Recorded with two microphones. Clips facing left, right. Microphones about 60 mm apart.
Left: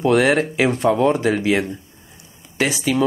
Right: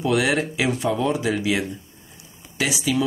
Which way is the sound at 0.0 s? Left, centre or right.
Left.